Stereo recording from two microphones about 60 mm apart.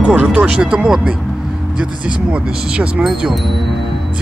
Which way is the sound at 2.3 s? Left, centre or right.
Centre.